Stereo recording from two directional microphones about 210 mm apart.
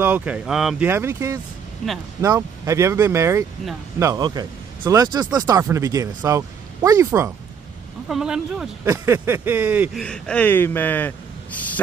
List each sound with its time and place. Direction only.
0.0 s speech: 10° right (ahead or behind)
8.8 s speech: 15° right (ahead or behind)
10.0 s speech: 5° left (ahead or behind)
11.5 s a sound: 5° left (ahead or behind)